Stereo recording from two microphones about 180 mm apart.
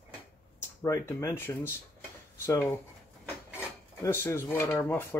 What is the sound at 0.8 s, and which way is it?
Speech, 15° left (ahead or behind).